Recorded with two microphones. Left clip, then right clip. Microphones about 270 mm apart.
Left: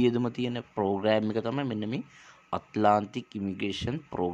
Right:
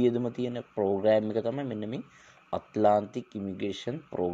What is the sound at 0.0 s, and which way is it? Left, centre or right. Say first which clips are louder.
Speech: even; centre.